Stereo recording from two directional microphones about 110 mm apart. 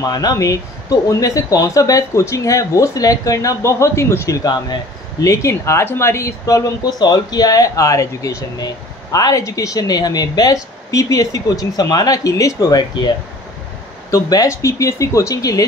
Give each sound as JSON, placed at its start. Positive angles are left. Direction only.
{"t": 0.0, "sound": "speech", "side_deg": 35}
{"t": 14.1, "sound": "speech", "side_deg": 30}